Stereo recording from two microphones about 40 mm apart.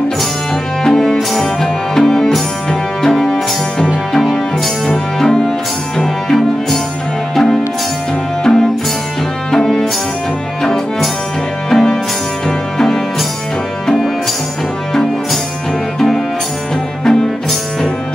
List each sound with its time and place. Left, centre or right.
0.8 s music: centre
8.5 s music: centre
17.0 s music: centre